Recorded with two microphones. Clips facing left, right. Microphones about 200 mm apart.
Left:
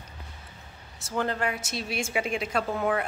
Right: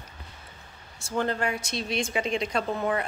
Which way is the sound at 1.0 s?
Centre (ahead or behind).